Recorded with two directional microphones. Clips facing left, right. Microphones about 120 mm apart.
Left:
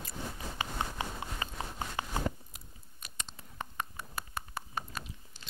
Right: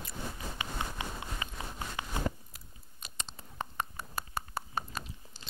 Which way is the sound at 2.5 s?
20° left (ahead or behind).